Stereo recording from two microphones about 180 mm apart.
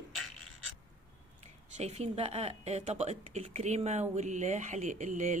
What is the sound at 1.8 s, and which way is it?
Speech, 35° right (ahead or behind).